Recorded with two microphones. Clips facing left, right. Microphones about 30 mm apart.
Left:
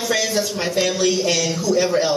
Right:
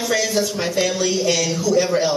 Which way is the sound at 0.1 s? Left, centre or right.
Centre.